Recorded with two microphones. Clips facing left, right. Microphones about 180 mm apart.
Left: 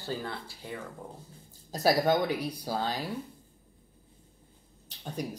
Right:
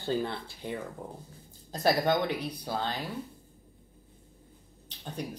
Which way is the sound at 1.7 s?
10° left (ahead or behind).